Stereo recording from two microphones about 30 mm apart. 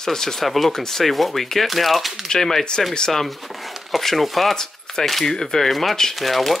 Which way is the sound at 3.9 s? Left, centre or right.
Centre.